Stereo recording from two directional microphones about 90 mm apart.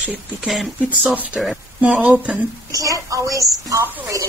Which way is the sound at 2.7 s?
40° right (ahead or behind).